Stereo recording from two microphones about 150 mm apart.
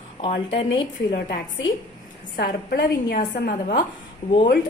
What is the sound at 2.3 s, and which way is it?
A woman's voice, 90° left.